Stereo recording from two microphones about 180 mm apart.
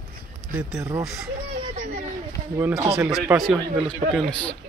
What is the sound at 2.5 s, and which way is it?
Speech, 15° right (ahead or behind).